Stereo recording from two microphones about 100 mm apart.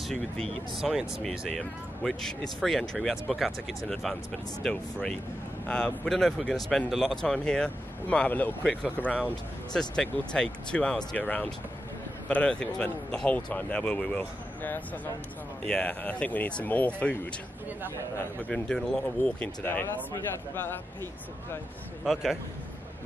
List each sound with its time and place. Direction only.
0.1 s speech: centre (ahead or behind)
18.5 s speech: 10° left (ahead or behind)
22.0 s speech: centre (ahead or behind)